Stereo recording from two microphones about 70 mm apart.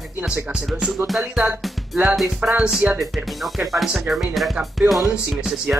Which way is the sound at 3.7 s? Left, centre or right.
Centre.